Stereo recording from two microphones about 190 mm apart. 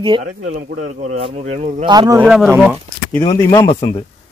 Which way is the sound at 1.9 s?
20° right (ahead or behind).